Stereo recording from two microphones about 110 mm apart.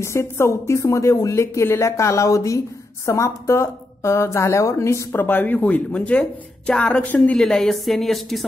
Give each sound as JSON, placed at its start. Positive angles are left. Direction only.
{"t": 0.0, "sound": "a woman's voice", "side_deg": 25}